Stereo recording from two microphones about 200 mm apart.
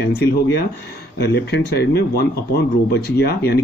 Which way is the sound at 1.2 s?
55° left (ahead or behind).